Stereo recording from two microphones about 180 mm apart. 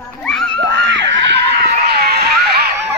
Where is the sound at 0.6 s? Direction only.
80° right; by 2.6 s 60° right (ahead or behind).